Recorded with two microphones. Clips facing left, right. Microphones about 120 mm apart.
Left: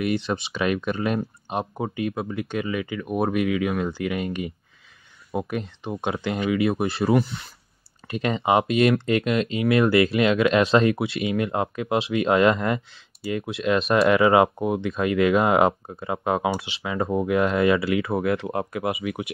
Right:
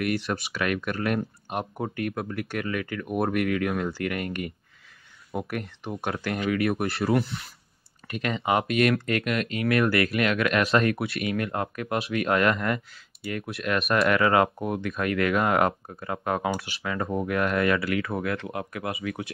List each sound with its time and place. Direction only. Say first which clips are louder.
0.0 s speech: left 3 dB; 25° left (ahead or behind)